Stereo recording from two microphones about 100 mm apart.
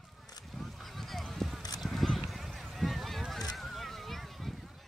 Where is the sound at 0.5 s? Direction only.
Centre (ahead or behind).